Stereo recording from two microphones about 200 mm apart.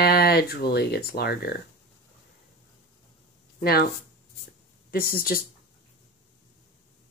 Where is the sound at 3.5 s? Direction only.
45° left (ahead or behind).